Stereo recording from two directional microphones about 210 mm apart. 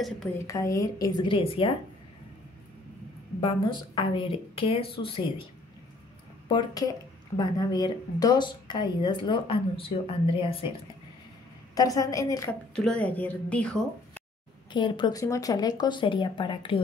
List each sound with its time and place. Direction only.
0.5 s a woman's voice: 15° left (ahead or behind)
3.3 s a woman's voice: 25° left (ahead or behind)
6.5 s a woman's voice: 15° left (ahead or behind)
11.7 s a woman's voice: 15° left (ahead or behind)
12.7 s speech: 5° left (ahead or behind)
14.7 s a woman's voice: 20° left (ahead or behind)